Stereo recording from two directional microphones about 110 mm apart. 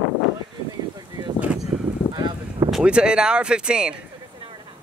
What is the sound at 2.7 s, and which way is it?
Speech, 10° right (ahead or behind).